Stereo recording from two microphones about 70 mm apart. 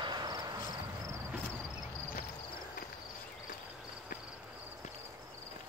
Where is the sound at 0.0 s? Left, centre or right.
Right.